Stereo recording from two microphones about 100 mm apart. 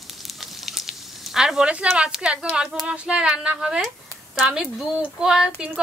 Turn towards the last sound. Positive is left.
turn(degrees=-10)  # may be behind; listen again after turning